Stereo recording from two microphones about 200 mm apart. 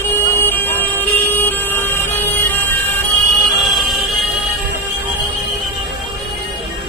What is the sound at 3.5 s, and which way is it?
Music, centre (ahead or behind).